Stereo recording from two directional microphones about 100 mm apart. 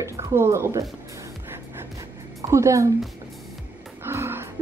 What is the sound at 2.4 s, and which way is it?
Speech, 30° right (ahead or behind).